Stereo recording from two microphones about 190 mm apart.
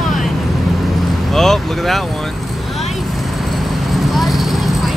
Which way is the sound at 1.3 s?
Centre (ahead or behind).